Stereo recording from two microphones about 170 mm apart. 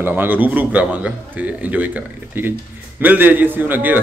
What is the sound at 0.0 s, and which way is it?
A man's voice, 10° right (ahead or behind).